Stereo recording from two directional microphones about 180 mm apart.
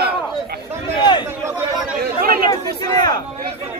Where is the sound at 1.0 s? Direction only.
25° left (ahead or behind).